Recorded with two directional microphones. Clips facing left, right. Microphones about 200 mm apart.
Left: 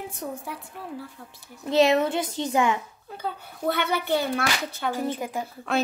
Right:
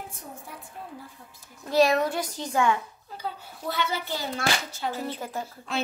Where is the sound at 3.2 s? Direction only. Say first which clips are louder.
Left 4 dB; 60° left (ahead or behind).